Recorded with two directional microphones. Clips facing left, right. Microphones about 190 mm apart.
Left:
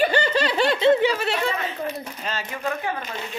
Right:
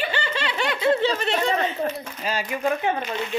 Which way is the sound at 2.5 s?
20° right (ahead or behind).